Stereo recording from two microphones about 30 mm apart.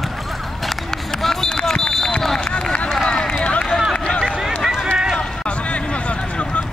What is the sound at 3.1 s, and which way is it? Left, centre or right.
Run, left.